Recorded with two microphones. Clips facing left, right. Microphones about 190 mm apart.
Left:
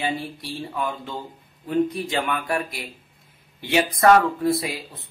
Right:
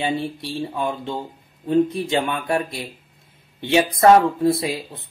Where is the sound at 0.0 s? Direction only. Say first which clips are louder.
Right 4 dB; 25° right (ahead or behind).